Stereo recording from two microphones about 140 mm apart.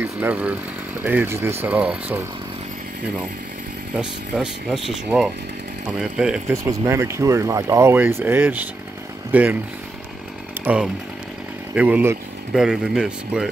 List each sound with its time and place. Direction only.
0.0 s speech: 10° right (ahead or behind)
3.9 s speech: 5° right (ahead or behind)
6.5 s speech: 25° right (ahead or behind)
10.6 s speech: 10° right (ahead or behind)